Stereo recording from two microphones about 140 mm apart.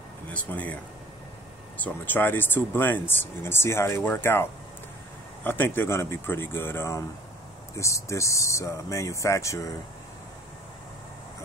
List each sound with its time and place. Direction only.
0.3 s speech: 10° left (ahead or behind)
1.8 s speech: 10° left (ahead or behind)